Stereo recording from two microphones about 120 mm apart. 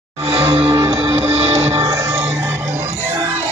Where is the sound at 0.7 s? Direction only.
25° right (ahead or behind).